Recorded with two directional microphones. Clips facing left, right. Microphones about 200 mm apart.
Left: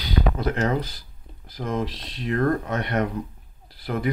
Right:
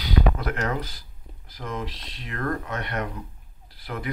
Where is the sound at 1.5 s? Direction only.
35° left (ahead or behind).